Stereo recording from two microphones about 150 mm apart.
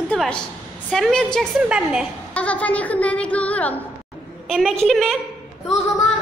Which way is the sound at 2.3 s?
10° left (ahead or behind).